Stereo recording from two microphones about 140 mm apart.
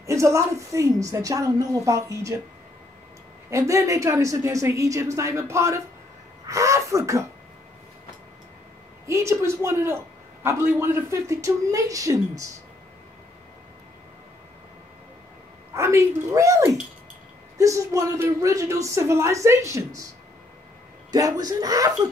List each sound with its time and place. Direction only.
0.0 s speech: 20° right (ahead or behind)
3.4 s speech: 20° right (ahead or behind)
9.0 s speech: 20° right (ahead or behind)
15.7 s speech: 20° right (ahead or behind)
21.1 s speech: 25° right (ahead or behind)